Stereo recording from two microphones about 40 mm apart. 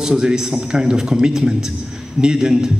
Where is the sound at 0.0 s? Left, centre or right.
Centre.